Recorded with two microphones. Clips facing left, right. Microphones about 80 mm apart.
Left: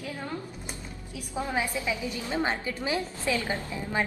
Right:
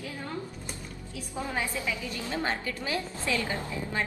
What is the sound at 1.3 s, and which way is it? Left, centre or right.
A woman's voice, centre.